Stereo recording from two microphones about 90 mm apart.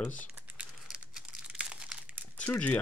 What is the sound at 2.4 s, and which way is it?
Speech, 15° left (ahead or behind).